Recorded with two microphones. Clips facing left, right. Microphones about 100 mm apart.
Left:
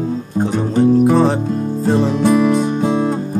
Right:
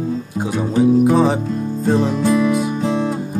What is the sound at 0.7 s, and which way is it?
Music, 5° right (ahead or behind).